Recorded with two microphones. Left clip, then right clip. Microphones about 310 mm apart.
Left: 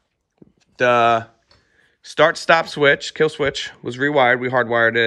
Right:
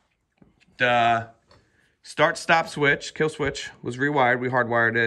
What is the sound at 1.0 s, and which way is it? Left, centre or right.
Speech, centre.